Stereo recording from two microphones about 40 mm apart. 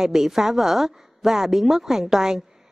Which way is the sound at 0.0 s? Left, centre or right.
Centre.